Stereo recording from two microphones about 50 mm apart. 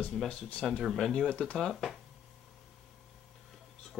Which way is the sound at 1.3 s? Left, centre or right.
Left.